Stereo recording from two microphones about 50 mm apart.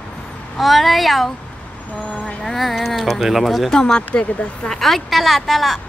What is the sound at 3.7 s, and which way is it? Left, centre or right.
Speech, centre.